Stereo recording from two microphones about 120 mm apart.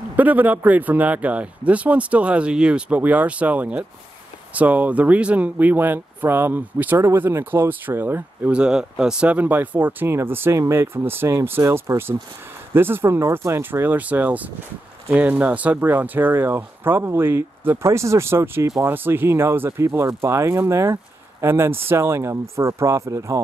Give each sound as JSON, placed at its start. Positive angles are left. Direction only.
{"t": 0.1, "sound": "speech", "side_deg": -15}
{"t": 8.5, "sound": "speech", "side_deg": -5}